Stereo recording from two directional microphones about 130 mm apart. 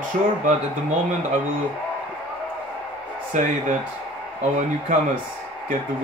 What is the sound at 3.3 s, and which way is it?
Speech, 80° right.